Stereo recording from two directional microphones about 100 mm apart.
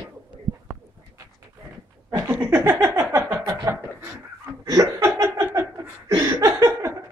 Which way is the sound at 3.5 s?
30° right (ahead or behind).